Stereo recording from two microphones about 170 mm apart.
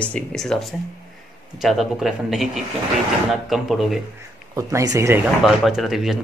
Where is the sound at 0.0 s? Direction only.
5° left (ahead or behind).